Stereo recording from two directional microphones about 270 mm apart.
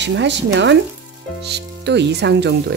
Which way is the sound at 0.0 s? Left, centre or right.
Right.